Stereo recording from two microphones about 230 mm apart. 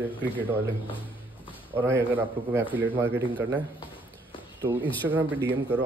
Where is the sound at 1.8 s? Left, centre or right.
Centre.